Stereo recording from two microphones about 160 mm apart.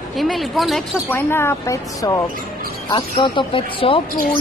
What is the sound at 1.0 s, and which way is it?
A woman's voice, 15° left (ahead or behind).